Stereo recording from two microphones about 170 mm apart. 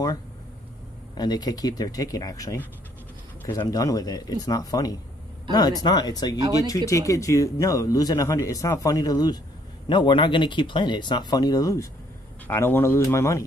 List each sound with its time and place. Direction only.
1.1 s speech: 25° left (ahead or behind)